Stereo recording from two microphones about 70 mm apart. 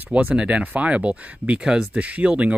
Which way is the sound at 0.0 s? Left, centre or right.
Right.